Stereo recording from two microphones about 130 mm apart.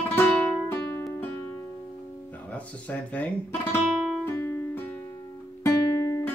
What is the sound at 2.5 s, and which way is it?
Speech, 10° left (ahead or behind).